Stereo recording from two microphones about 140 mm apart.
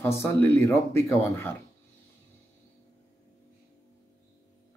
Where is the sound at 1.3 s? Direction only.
20° left (ahead or behind).